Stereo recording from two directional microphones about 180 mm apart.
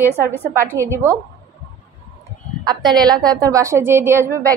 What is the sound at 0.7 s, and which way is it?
Speech, 15° right (ahead or behind).